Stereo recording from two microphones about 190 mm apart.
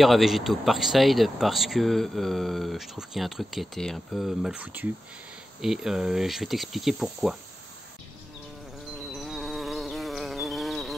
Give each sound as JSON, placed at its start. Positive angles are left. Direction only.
{"t": 0.0, "sound": "speech", "side_deg": 0}
{"t": 9.1, "sound": "insect", "side_deg": 0}